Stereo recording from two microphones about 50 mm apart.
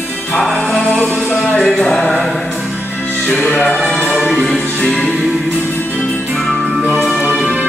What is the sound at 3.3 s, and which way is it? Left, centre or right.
Music, centre.